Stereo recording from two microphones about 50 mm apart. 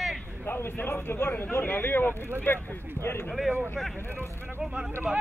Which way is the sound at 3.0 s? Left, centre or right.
Right.